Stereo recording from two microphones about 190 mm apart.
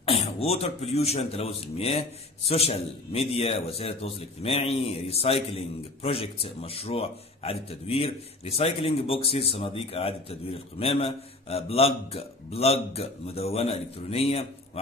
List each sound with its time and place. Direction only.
0.0 s speech: 30° left (ahead or behind)